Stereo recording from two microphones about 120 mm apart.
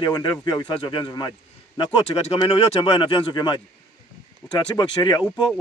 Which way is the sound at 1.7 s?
50° left (ahead or behind).